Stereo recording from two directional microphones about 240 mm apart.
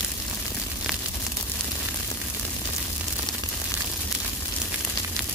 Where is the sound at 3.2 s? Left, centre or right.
Centre.